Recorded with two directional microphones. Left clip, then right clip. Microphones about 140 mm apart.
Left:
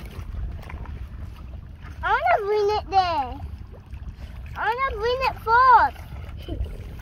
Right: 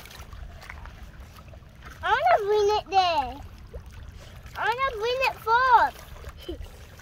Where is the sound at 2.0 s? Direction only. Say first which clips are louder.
Left 1 dB; 15° left (ahead or behind).